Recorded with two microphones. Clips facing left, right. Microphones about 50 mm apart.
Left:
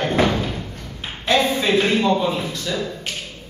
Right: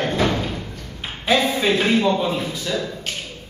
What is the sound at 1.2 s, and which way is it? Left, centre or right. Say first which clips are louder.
Speech: even; centre.